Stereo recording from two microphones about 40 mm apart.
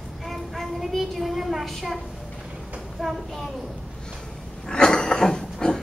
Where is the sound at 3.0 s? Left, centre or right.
Centre.